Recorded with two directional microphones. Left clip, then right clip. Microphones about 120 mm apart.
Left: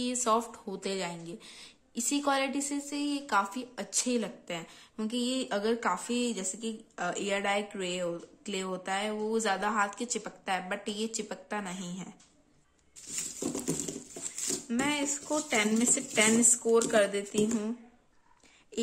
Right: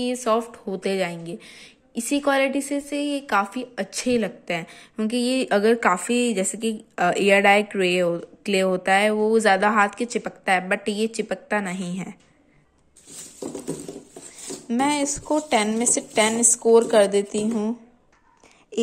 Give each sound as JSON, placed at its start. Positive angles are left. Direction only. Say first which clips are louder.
{"t": 0.0, "sound": "speech", "louder": "right 7 dB", "side_deg": -5}
{"t": 14.8, "sound": "speech", "louder": "right 10 dB", "side_deg": -30}